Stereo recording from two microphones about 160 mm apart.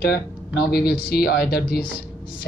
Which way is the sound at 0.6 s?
75° left (ahead or behind).